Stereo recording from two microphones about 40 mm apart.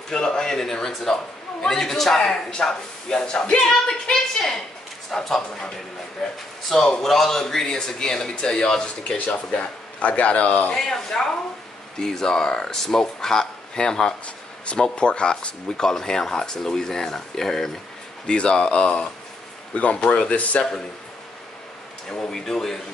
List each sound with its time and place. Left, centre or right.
0.1 s a man's voice: centre
9.0 s a man's voice: left
10.7 s a man's voice: centre
12.6 s speech: centre
14.8 s speech: left
15.8 s a man's voice: centre
18.2 s speech: left
19.7 s speech: left
20.0 s speech: centre
20.2 s a man's voice: left
22.3 s a man's voice: centre